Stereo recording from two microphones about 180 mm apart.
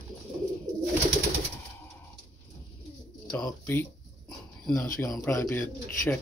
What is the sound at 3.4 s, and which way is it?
Speech, 10° left (ahead or behind).